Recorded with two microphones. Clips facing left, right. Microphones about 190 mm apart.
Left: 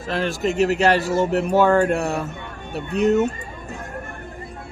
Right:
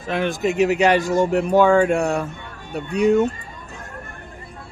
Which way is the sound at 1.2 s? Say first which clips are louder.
Right 2 dB; 5° left (ahead or behind).